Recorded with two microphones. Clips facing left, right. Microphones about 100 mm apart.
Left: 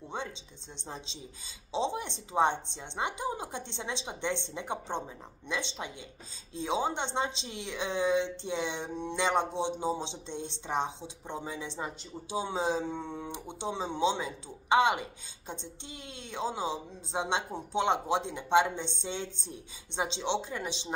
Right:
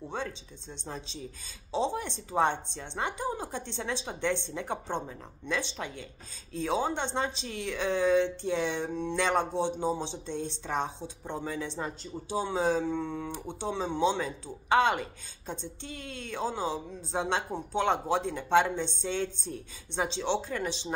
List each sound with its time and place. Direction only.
0.8 s speech: 20° left (ahead or behind)